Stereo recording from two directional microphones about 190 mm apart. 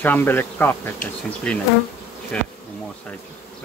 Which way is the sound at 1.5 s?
5° left (ahead or behind).